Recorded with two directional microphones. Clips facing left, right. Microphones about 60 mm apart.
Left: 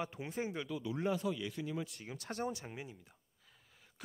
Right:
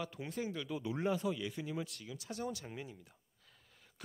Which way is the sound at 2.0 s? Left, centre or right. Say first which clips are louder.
Left 2 dB; left.